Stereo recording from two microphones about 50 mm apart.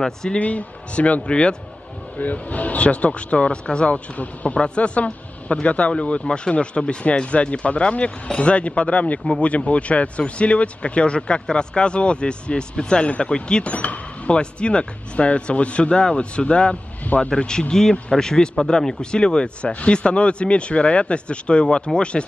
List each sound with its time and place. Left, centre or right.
0.0 s speech: centre
0.4 s speech: left
2.1 s speech: left